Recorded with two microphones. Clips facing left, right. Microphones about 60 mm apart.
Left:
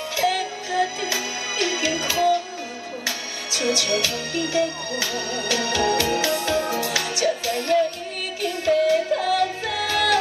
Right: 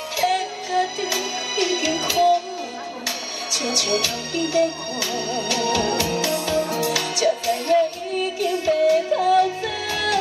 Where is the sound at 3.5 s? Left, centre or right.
Left.